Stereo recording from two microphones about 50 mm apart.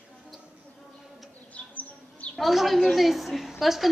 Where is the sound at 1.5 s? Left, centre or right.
Left.